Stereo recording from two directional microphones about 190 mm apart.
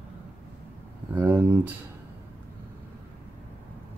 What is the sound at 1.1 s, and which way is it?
Speech, 10° right (ahead or behind).